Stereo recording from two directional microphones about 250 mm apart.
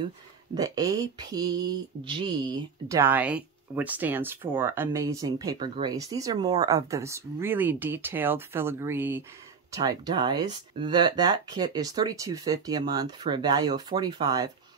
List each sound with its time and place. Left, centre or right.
0.6 s speech: centre